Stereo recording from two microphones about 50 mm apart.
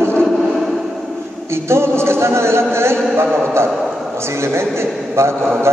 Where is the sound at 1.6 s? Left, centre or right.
Right.